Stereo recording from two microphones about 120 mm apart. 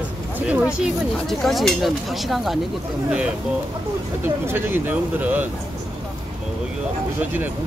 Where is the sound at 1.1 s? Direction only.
5° left (ahead or behind).